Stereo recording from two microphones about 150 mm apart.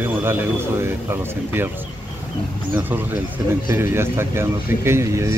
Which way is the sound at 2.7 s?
10° right (ahead or behind).